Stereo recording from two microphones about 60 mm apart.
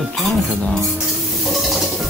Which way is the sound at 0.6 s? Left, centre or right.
Centre.